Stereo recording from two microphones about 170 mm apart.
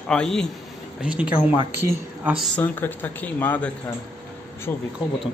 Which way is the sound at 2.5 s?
10° left (ahead or behind).